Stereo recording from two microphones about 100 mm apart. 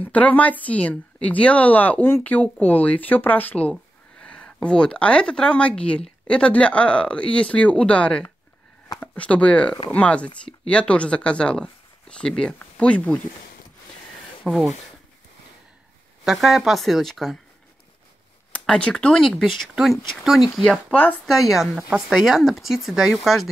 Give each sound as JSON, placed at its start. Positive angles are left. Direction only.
{"t": 0.0, "sound": "speech", "side_deg": 15}
{"t": 14.4, "sound": "speech", "side_deg": -5}
{"t": 16.3, "sound": "speech", "side_deg": -5}
{"t": 18.5, "sound": "speech", "side_deg": 10}
{"t": 20.9, "sound": "speech", "side_deg": 15}
{"t": 21.3, "sound": "speech", "side_deg": 0}